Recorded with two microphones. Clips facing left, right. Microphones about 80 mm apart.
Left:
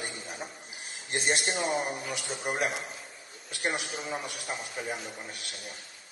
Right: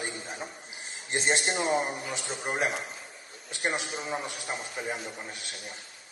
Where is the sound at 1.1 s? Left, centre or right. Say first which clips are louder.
Right 2 dB; right.